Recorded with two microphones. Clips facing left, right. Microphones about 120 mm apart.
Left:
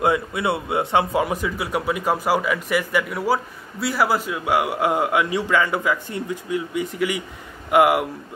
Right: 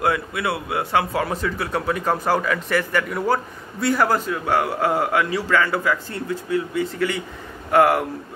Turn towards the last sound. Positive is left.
turn(degrees=15)  # may be behind; listen again after turning